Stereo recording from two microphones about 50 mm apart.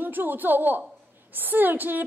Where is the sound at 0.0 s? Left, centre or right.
Right.